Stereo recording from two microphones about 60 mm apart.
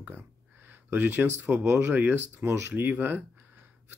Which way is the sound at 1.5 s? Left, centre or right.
Right.